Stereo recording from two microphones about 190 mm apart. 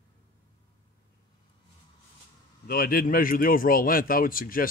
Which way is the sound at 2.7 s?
50° left (ahead or behind).